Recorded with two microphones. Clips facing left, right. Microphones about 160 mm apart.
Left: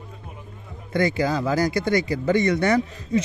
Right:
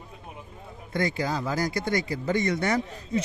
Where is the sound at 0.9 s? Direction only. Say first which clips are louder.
Left 6 dB; 90° left.